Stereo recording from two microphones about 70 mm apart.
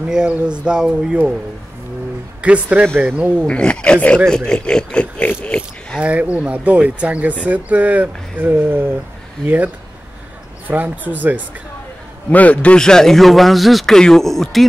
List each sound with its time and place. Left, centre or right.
0.1 s speech: centre
2.4 s speech: centre
3.4 s a sound: centre
5.9 s speech: centre
10.7 s speech: right
12.3 s a man's voice: left
12.7 s speech: centre